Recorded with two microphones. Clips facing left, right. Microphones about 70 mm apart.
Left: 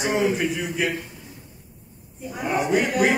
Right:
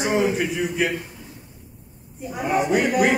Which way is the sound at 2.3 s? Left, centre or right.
Centre.